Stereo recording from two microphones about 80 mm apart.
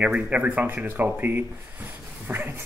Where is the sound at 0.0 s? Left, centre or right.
Centre.